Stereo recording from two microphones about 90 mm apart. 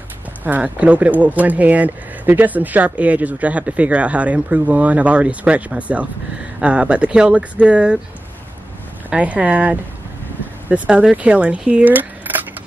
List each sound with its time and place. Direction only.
0.4 s speech: 15° right (ahead or behind)
9.1 s speech: 15° right (ahead or behind)